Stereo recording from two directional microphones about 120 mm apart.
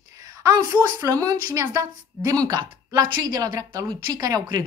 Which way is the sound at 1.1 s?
30° right (ahead or behind).